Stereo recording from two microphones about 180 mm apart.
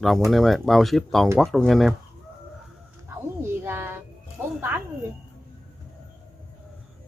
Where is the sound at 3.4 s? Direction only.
15° right (ahead or behind).